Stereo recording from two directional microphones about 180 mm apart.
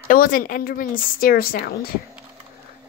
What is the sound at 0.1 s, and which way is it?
A woman's voice, 50° left (ahead or behind).